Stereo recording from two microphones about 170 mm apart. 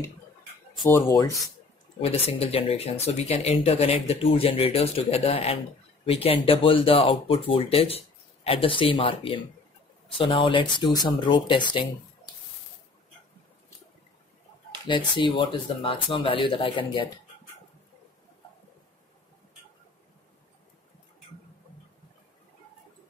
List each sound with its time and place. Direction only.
1.0 s speech: 20° left (ahead or behind)
2.0 s speech: 35° left (ahead or behind)
15.1 s speech: 30° left (ahead or behind)